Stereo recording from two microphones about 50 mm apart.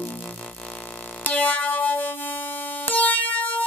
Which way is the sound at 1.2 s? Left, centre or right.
Left.